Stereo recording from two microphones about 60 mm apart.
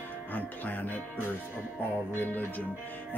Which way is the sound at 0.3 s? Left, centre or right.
Left.